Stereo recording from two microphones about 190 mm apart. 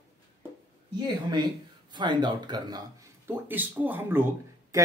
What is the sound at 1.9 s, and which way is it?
Speech, 25° right (ahead or behind).